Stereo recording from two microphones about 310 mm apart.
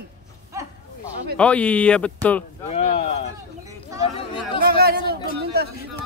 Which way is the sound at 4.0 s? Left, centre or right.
Centre.